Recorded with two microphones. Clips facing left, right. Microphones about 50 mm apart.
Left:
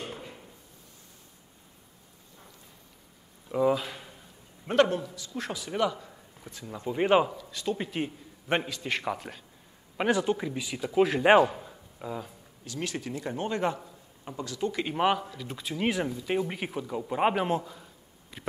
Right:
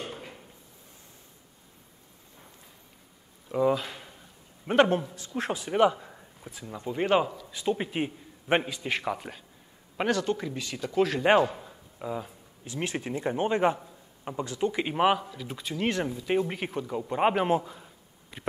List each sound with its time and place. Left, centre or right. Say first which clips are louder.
3.4 s a sound: even; centre
4.8 s a man's voice: right 3 dB; right
6.4 s a man's voice: even; centre
6.8 s speech: left 1 dB; centre
7.5 s a man's voice: right 3 dB; centre
10.0 s a man's voice: left 1 dB; centre
11.5 s a sound: left 1 dB; centre
12.6 s speech: right 2 dB; right; by 18.5 s centre